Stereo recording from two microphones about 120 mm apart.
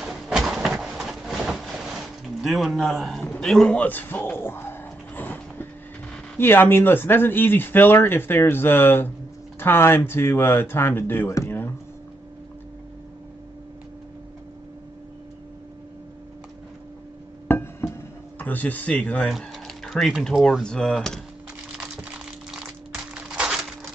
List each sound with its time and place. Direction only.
0.0 s a sound: centre (ahead or behind)
2.2 s a man's voice: centre (ahead or behind)
3.8 s speech: 15° left (ahead or behind)
5.1 s train: 15° left (ahead or behind)
6.3 s speech: 20° left (ahead or behind)
17.5 s music: 20° left (ahead or behind)
18.4 s speech: 15° left (ahead or behind)
19.2 s speech: centre (ahead or behind)
23.1 s a sound: 10° right (ahead or behind)